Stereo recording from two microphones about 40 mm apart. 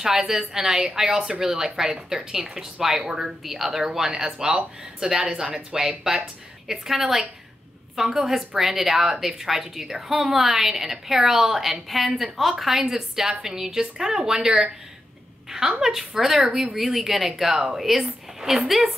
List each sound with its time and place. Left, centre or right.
0.0 s a woman's voice: centre
3.1 s speech: centre
3.4 s a woman's voice: centre; by 14.7 s right
15.8 s a woman's voice: centre